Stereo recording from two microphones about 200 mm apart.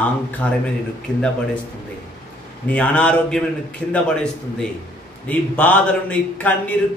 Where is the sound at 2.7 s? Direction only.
5° left (ahead or behind).